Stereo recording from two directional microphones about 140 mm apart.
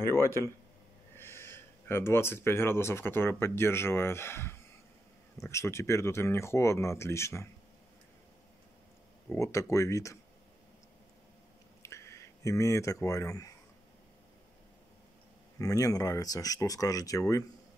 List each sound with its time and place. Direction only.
0.0 s speech: 20° left (ahead or behind)
9.3 s speech: 20° left (ahead or behind)
11.8 s a sound: 20° left (ahead or behind)
15.6 s speech: 25° left (ahead or behind)